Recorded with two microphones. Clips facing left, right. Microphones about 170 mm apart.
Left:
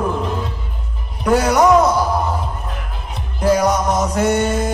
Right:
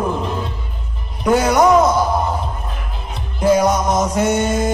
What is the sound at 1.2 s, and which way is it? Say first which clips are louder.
Speech: even; 5° right (ahead or behind).